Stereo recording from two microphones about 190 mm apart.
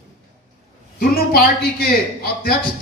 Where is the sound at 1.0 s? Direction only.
55° left (ahead or behind).